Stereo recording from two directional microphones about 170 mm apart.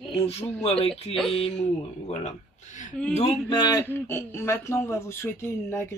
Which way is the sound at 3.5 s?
20° left (ahead or behind).